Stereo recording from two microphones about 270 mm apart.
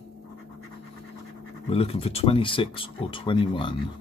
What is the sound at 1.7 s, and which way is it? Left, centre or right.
Speech, left.